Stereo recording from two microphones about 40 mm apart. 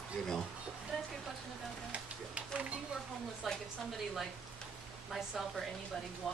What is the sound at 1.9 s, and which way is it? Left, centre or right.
Music, right.